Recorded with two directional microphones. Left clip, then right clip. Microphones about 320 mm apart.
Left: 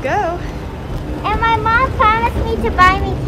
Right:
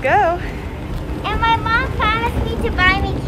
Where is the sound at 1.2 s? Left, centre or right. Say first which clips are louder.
Left 2 dB; left.